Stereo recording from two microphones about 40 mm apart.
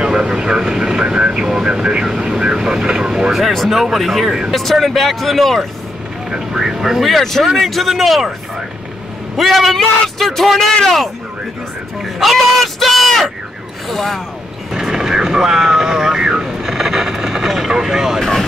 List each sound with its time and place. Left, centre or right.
0.0 s vehicle: right
0.3 s speech: centre
3.5 s speech: centre
6.3 s speech: centre
9.4 s speech: centre
12.0 s speech: centre
14.7 s vehicle: centre